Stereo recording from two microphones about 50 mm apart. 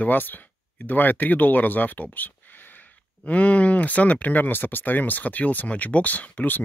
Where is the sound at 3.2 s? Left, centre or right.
Left.